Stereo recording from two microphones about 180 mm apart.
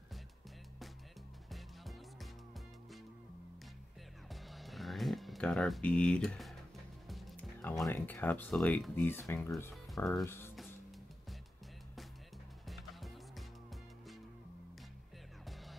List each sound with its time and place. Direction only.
4.3 s music: centre (ahead or behind)
7.8 s speech: 10° left (ahead or behind)
12.6 s music: centre (ahead or behind)